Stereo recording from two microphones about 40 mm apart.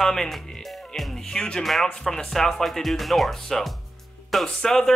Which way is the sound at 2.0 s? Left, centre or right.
Centre.